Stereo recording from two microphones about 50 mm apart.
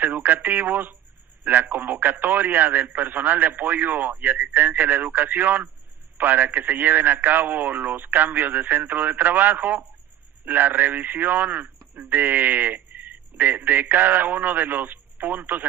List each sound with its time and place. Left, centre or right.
0.0 s a man's voice: right